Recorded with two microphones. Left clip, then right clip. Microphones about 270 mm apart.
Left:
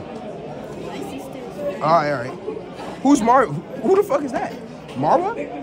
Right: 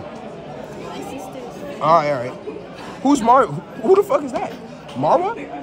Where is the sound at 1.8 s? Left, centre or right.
Right.